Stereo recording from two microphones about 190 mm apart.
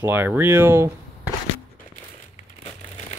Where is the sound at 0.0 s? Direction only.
10° right (ahead or behind).